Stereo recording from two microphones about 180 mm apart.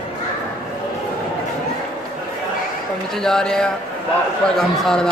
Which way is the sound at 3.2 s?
5° left (ahead or behind).